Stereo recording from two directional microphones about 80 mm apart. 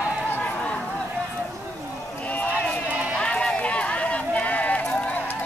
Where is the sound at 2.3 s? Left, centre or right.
Centre.